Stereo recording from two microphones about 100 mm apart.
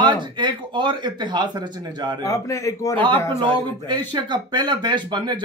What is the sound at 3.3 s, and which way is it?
Speech, 50° right (ahead or behind).